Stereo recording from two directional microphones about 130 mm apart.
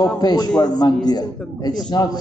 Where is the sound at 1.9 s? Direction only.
30° left (ahead or behind).